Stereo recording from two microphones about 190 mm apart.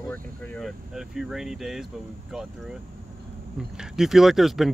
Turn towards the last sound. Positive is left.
turn(degrees=0)  # may be behind; listen again after turning